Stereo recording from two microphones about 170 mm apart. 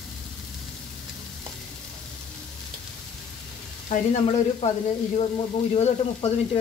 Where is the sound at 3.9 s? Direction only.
40° left (ahead or behind).